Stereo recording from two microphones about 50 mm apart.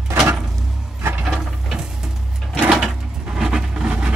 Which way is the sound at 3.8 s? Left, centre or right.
Right.